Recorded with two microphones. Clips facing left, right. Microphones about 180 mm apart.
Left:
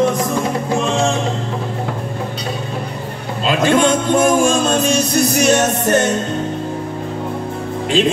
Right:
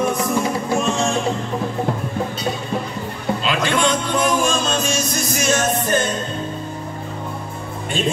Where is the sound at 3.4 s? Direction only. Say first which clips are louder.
Left 7 dB; 45° left (ahead or behind); by 6.1 s 70° left (ahead or behind).